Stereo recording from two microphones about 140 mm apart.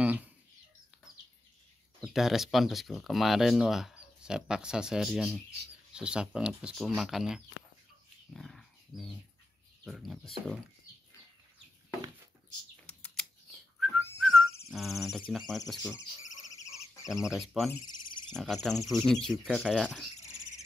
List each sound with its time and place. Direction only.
0.0 s chicken: 10° right (ahead or behind)
2.0 s speech: centre (ahead or behind)
8.3 s dog: centre (ahead or behind)
9.8 s speech: centre (ahead or behind)
12.8 s typing: 5° left (ahead or behind)
14.2 s music: centre (ahead or behind)
14.7 s speech: centre (ahead or behind)
16.5 s frog: 20° left (ahead or behind)
17.1 s speech: 5° right (ahead or behind)